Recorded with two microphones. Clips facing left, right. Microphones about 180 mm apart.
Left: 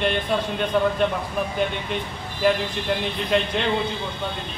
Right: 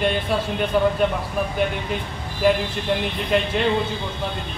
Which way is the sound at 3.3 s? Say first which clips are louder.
Right 1 dB; 5° right (ahead or behind).